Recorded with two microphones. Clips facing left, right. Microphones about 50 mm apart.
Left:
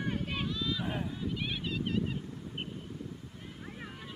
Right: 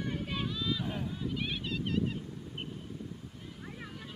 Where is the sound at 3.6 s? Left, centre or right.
Centre.